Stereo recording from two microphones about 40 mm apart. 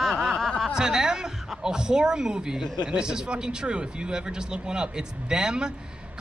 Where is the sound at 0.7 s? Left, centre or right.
Centre.